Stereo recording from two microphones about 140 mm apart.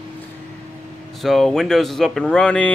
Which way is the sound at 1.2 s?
Centre (ahead or behind).